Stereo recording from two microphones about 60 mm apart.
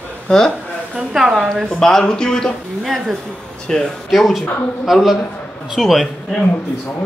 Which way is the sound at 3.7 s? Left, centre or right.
Centre.